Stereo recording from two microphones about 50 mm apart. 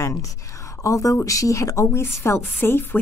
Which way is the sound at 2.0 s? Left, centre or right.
Left.